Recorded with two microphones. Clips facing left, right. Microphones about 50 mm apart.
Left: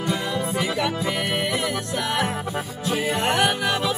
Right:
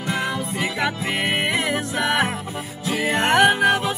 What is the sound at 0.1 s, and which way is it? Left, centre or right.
Music, right.